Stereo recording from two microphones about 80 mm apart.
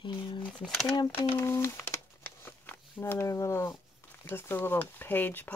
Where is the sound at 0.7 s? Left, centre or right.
Centre.